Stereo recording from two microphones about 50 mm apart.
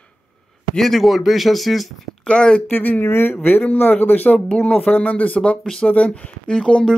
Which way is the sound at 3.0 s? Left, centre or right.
Left.